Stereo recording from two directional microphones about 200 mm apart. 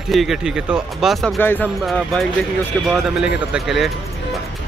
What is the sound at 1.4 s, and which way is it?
Speech, 10° left (ahead or behind).